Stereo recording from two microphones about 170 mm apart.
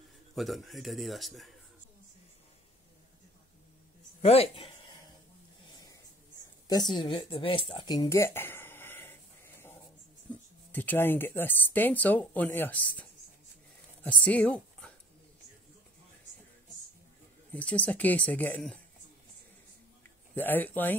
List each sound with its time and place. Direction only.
0.4 s a man's voice: centre (ahead or behind)
4.2 s a sound: 35° left (ahead or behind)
6.7 s a sound: 25° left (ahead or behind)
10.7 s speech: 10° left (ahead or behind)
14.0 s speech: 10° left (ahead or behind)
17.5 s speech: 10° left (ahead or behind)
20.3 s speech: 10° left (ahead or behind)